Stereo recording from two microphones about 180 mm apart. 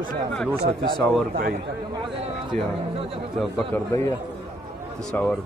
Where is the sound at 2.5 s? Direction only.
45° right (ahead or behind).